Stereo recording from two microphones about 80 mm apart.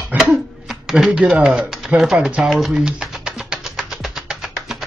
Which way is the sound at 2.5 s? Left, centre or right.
Centre.